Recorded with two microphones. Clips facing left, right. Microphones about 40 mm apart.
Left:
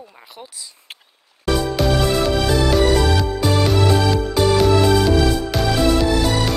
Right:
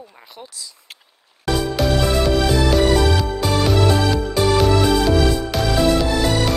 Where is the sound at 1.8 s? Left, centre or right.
Centre.